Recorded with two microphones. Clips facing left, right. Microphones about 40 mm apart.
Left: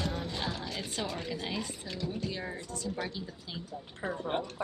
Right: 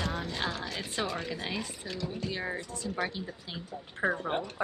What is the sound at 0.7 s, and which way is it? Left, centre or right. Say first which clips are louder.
Speech: right 3 dB; right.